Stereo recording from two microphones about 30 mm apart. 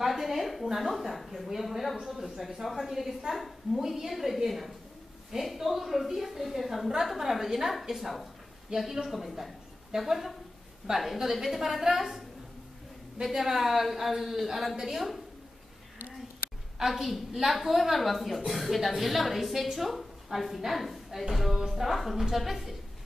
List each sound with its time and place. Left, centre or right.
0.0 s a woman's voice: centre
3.7 s a woman's voice: centre
4.1 s a woman's voice: centre
13.2 s a woman's voice: centre
16.8 s a woman's voice: centre